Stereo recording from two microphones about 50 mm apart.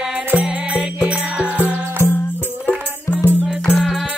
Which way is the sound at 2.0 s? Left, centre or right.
Left.